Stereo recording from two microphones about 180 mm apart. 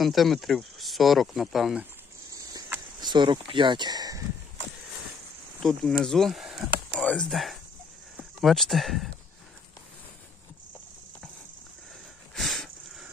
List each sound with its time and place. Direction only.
0.0 s speech: centre (ahead or behind)
2.3 s cricket: 20° right (ahead or behind)
5.6 s speech: 5° left (ahead or behind)
12.4 s sniff: centre (ahead or behind)